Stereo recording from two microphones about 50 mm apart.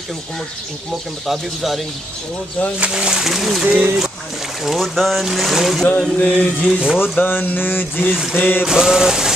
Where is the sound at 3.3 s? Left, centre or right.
Centre.